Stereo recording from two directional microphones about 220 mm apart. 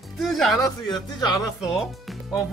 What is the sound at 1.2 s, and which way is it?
Music, 15° left (ahead or behind).